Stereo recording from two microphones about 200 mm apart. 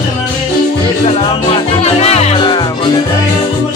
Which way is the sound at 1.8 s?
30° left (ahead or behind).